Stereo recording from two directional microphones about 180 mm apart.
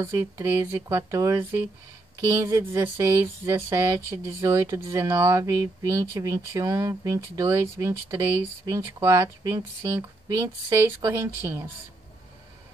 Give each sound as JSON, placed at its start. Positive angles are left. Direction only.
{"t": 0.0, "sound": "speech", "side_deg": -15}